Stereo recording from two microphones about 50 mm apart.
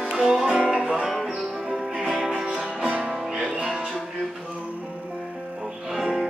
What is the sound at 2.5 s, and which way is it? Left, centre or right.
Music, right.